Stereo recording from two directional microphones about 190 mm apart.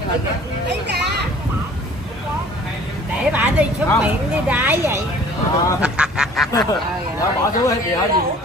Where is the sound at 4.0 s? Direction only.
10° right (ahead or behind).